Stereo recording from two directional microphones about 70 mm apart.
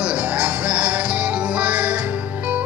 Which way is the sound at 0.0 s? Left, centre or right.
Centre.